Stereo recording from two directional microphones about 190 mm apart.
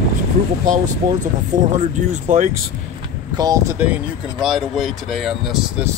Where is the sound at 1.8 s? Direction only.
40° right (ahead or behind).